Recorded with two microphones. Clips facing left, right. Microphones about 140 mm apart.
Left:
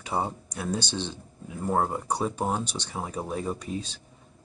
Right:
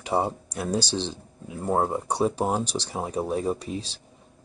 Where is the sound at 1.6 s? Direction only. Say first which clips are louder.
Right 2 dB; 15° right (ahead or behind).